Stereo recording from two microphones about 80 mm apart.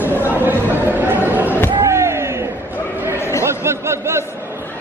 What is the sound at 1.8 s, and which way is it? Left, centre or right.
Slam, right.